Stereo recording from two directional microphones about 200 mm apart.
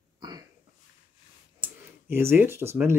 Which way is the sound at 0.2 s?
20° right (ahead or behind).